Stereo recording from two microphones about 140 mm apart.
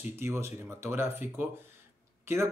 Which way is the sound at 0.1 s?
20° right (ahead or behind).